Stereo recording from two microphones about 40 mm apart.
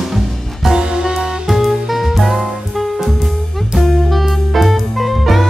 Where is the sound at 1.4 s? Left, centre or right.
Centre.